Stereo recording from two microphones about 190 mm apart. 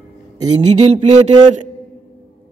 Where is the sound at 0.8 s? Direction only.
35° right (ahead or behind).